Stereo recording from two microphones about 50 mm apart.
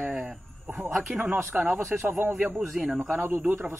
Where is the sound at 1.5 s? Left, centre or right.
Centre.